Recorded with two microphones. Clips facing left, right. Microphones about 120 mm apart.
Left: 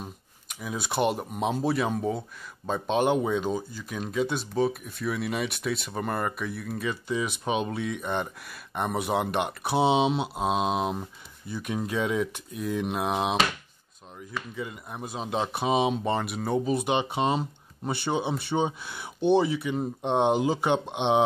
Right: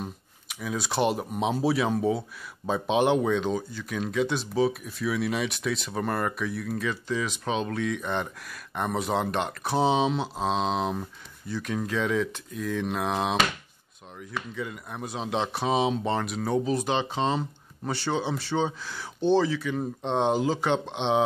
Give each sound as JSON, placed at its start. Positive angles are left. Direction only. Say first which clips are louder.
{"t": 0.0, "sound": "speech", "louder": "right 4 dB", "side_deg": 0}
{"t": 14.5, "sound": "speech", "louder": "right 1 dB", "side_deg": 5}